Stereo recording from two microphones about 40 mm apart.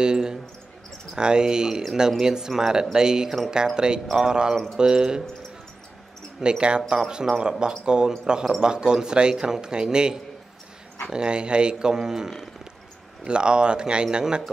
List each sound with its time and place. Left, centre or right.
0.0 s speech: centre
6.4 s speech: right
13.2 s speech: right